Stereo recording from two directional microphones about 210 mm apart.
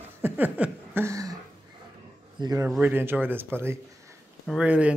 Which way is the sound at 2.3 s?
20° right (ahead or behind).